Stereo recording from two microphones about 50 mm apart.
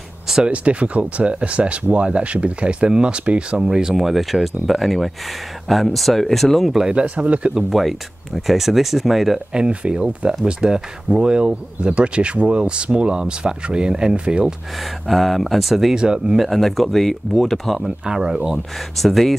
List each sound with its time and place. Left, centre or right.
0.5 s speech: right; by 6.7 s centre
6.7 s speech: centre
7.7 s speech: centre
9.5 s speech: centre
14.8 s speech: centre
15.9 s speech: centre
16.3 s speech: centre
17.8 s speech: centre
18.9 s speech: centre